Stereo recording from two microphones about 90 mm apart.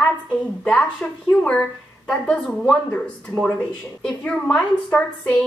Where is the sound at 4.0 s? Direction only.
10° left (ahead or behind).